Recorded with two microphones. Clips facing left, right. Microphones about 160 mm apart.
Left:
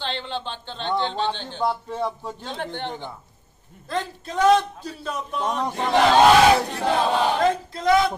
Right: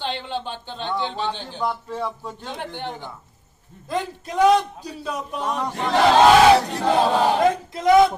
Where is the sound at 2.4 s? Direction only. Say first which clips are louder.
Left 1 dB; 10° right (ahead or behind).